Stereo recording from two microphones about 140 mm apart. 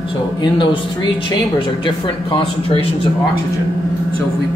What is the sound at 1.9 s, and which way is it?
Speech, 40° left (ahead or behind).